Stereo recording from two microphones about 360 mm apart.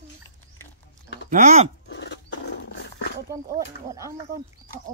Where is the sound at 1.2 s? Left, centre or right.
Centre.